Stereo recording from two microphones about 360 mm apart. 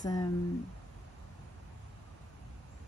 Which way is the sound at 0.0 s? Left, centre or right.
Centre.